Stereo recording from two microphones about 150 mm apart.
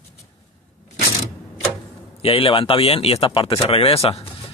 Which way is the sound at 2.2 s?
40° left (ahead or behind).